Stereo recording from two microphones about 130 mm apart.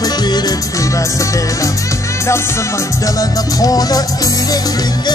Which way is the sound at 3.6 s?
30° left (ahead or behind).